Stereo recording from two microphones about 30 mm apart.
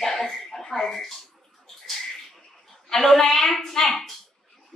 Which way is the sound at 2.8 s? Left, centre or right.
Centre.